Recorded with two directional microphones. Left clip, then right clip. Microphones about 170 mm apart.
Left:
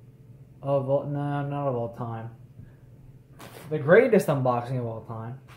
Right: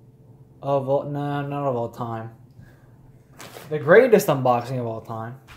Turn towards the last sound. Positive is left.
turn(degrees=-30)  # may be behind; listen again after turning